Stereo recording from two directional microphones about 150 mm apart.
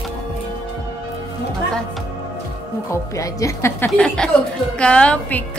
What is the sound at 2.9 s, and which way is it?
Speech, 20° left (ahead or behind).